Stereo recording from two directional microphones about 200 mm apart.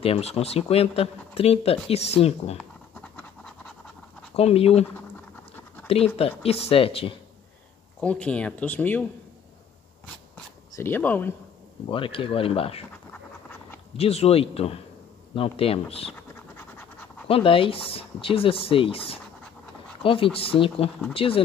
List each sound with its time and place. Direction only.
0.0 s speech: 30° left (ahead or behind)
2.5 s scratch: 5° left (ahead or behind)
4.4 s speech: 30° left (ahead or behind)
6.1 s speech: 30° left (ahead or behind)
8.0 s speech: 5° left (ahead or behind)
10.3 s speech: 10° left (ahead or behind)
11.9 s speech: 25° left (ahead or behind)
13.9 s speech: 30° left (ahead or behind)
16.1 s scratch: 10° left (ahead or behind)
17.3 s speech: 25° left (ahead or behind)